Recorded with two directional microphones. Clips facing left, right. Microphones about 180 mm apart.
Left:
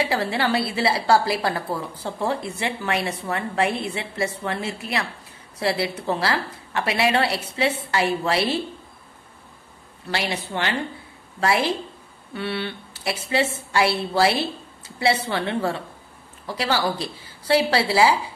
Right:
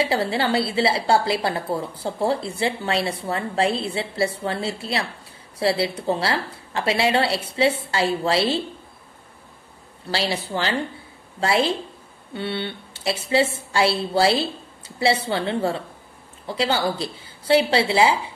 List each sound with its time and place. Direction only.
0.0 s a woman's voice: 25° right (ahead or behind)
10.1 s a woman's voice: 30° right (ahead or behind)